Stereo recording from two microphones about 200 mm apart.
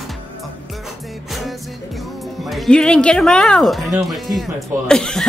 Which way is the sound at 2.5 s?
Centre (ahead or behind).